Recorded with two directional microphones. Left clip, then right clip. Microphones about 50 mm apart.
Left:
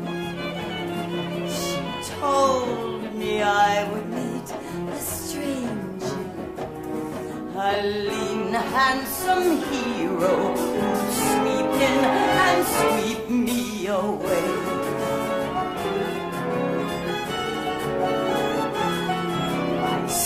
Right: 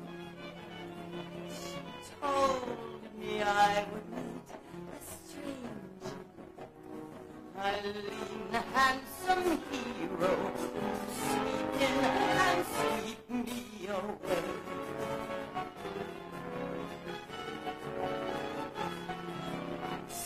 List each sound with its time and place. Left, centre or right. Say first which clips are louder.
2.2 s music: left 10 dB; left
7.6 s music: left 12 dB; left